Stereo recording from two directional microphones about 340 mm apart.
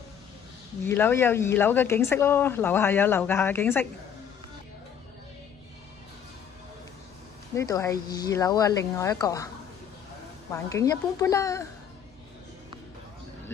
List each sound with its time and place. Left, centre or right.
0.8 s speech: centre
7.5 s speech: centre
10.5 s speech: centre